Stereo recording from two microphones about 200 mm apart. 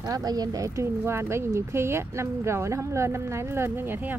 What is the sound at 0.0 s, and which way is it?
Speech, 20° right (ahead or behind).